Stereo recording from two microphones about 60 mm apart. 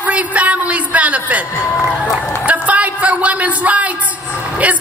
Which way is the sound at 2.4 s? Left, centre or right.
Right.